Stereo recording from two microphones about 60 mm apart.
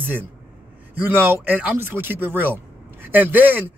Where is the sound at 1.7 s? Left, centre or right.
Right.